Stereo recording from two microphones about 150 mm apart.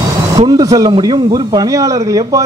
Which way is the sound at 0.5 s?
25° right (ahead or behind).